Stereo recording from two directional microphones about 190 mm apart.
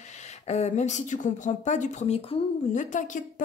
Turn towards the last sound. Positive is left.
turn(degrees=40)  # may be behind; listen again after turning